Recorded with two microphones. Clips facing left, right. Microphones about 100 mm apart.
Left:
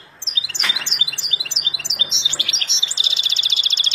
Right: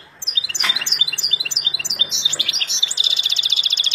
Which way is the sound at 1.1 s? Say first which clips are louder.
Right 1 dB; 15° left (ahead or behind).